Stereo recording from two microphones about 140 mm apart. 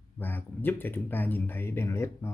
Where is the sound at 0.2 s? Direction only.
15° left (ahead or behind).